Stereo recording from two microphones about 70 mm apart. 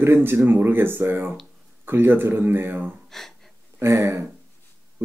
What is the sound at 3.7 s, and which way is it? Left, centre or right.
Speech, right.